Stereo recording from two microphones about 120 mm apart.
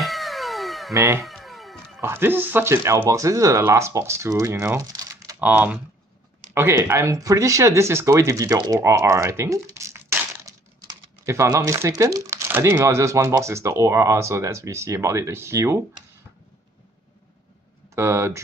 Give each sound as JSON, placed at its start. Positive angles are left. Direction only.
{"t": 0.0, "sound": "cat", "side_deg": 0}
{"t": 0.9, "sound": "speech", "side_deg": -25}
{"t": 1.2, "sound": "cat", "side_deg": 0}
{"t": 2.0, "sound": "speech", "side_deg": -20}
{"t": 5.4, "sound": "speech", "side_deg": -15}
{"t": 17.8, "sound": "speech", "side_deg": -25}